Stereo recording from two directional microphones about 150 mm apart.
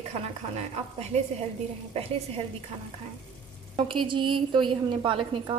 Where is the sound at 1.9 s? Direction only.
40° right (ahead or behind).